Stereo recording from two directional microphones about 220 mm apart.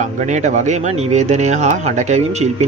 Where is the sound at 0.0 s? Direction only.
35° right (ahead or behind).